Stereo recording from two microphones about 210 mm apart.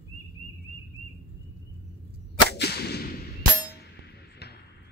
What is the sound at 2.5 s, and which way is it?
Whip, 50° left (ahead or behind).